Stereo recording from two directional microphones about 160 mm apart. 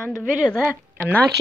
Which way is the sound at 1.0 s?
10° right (ahead or behind).